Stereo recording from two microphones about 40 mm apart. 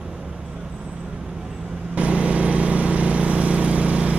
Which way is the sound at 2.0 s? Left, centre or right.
Right.